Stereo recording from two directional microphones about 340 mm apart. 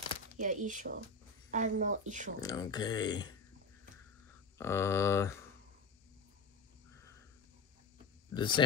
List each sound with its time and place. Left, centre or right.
0.4 s a woman's voice: right
2.4 s speech: centre
4.6 s speech: centre
8.4 s speech: centre